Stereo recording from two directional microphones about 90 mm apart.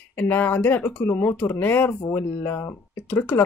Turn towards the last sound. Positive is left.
turn(degrees=25)  # may be behind; listen again after turning